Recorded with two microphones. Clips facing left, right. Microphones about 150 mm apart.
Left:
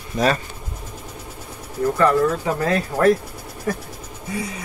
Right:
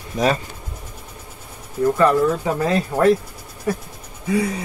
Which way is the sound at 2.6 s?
20° right (ahead or behind).